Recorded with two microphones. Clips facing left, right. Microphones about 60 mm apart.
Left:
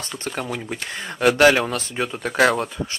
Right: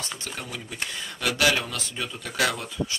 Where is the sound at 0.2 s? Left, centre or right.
Left.